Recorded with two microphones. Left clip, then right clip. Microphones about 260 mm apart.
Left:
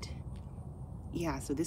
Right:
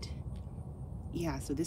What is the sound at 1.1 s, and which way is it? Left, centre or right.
Speech, centre.